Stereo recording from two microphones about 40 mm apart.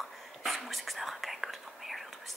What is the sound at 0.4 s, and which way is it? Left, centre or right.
Whispering, centre.